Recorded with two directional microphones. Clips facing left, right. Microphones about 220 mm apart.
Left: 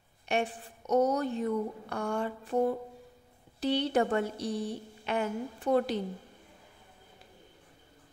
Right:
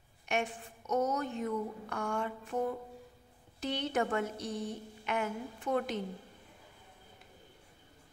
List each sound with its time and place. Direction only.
0.3 s a woman's voice: 35° left (ahead or behind)